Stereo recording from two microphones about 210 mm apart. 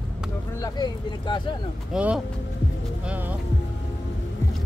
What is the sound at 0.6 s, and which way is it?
Speech, 20° left (ahead or behind).